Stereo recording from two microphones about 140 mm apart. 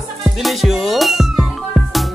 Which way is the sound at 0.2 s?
Centre (ahead or behind).